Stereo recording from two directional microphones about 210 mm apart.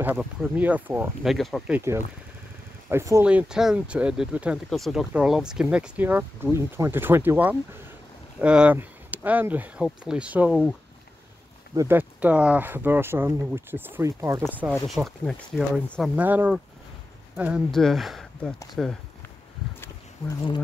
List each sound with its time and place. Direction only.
0.0 s speech: 5° right (ahead or behind)
1.8 s speech: 10° right (ahead or behind)
11.7 s speech: 15° right (ahead or behind)
14.5 s speech: 5° right (ahead or behind)
19.8 s a sound: 20° left (ahead or behind)